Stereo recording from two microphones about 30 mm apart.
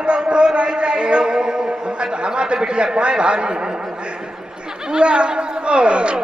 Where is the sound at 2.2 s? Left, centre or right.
Right.